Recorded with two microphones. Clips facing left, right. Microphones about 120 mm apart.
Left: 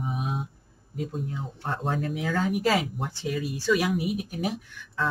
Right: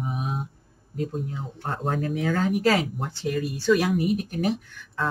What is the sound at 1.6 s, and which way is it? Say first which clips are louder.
Speech: right 1 dB; 45° right (ahead or behind).